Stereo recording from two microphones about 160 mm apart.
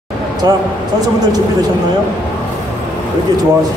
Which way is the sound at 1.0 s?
25° right (ahead or behind).